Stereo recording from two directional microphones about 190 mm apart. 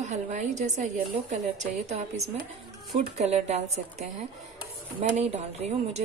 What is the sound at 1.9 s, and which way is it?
Speech, 35° right (ahead or behind).